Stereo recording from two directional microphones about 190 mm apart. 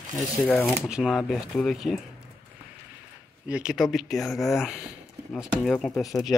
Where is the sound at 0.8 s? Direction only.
5° right (ahead or behind).